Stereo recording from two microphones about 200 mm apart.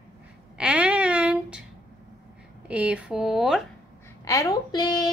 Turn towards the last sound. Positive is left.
turn(degrees=20)  # may be behind; listen again after turning